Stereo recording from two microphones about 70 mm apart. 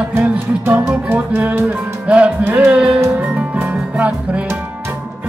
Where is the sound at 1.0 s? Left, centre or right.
Right.